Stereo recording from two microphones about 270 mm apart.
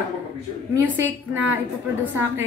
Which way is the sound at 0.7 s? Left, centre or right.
Centre.